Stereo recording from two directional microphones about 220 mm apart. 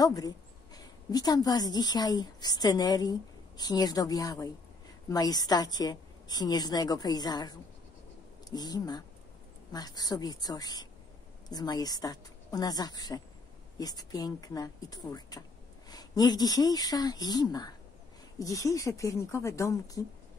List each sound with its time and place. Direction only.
0.0 s speech: 15° left (ahead or behind)